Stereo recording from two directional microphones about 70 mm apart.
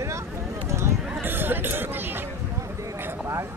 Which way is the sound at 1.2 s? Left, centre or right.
Right.